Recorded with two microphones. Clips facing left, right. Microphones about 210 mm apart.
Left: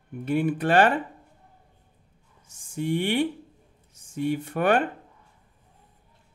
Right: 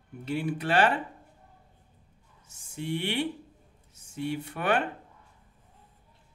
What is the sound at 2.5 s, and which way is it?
Speech, 45° left (ahead or behind).